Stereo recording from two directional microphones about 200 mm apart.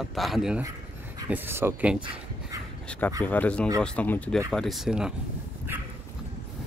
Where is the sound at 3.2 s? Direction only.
10° left (ahead or behind).